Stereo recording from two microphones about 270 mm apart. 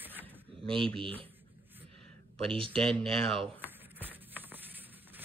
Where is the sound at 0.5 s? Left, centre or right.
Centre.